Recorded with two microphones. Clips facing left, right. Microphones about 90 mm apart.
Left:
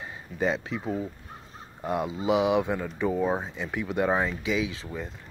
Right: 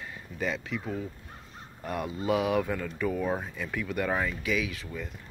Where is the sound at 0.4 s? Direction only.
30° left (ahead or behind).